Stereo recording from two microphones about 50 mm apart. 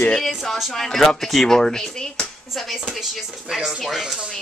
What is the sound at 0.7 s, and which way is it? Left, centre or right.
A woman's voice, centre.